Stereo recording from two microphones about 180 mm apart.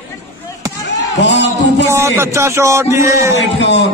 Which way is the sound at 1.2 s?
75° left (ahead or behind).